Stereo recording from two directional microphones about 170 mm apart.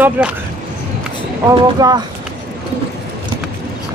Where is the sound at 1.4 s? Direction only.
20° right (ahead or behind).